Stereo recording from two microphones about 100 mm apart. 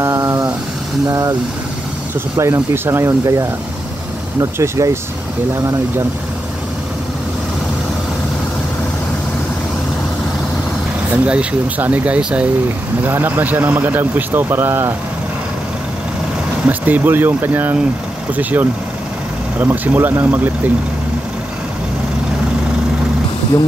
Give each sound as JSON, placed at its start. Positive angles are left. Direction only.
{"t": 0.0, "sound": "a sound", "side_deg": -35}
{"t": 1.0, "sound": "speech", "side_deg": -40}
{"t": 2.5, "sound": "speech", "side_deg": -25}
{"t": 11.2, "sound": "speech", "side_deg": -10}
{"t": 16.6, "sound": "speech", "side_deg": -15}